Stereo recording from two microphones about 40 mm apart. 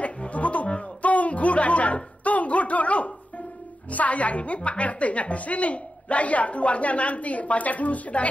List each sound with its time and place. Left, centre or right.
0.0 s music: left
3.9 s a woman's voice: left